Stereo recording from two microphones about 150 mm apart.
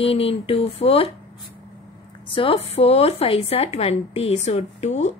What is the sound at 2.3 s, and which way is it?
Speech, 35° left (ahead or behind).